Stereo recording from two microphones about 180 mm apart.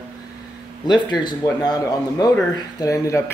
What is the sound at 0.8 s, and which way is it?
Speech, 25° left (ahead or behind).